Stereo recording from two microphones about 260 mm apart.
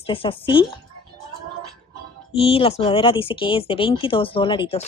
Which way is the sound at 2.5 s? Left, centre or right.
Left.